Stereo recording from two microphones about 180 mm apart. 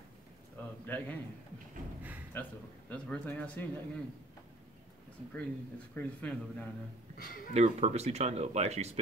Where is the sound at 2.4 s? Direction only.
10° left (ahead or behind).